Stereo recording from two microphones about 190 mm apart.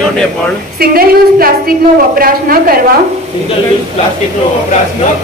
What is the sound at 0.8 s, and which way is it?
A woman's voice, 50° right (ahead or behind).